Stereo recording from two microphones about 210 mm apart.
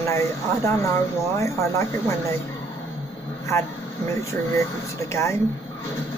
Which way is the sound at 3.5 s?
15° left (ahead or behind).